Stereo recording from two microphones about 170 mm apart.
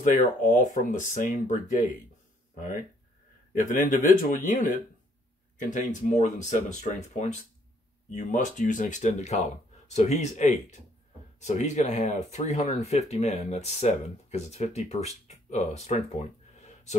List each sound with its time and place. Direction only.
0.4 s speech: 50° left (ahead or behind)
3.6 s speech: 50° left (ahead or behind)